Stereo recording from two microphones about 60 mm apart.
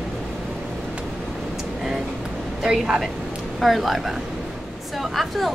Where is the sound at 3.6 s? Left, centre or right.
Centre.